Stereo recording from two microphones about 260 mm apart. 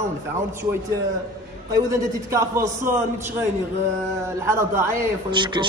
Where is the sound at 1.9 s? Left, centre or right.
Centre.